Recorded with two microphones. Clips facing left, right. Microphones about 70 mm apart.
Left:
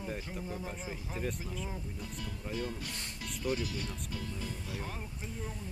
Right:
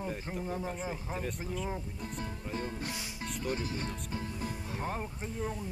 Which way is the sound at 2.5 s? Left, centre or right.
Right.